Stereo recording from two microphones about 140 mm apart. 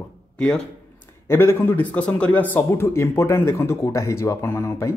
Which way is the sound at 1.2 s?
20° left (ahead or behind).